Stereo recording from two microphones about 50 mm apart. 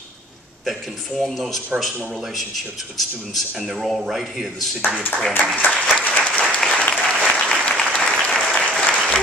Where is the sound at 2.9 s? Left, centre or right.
Centre.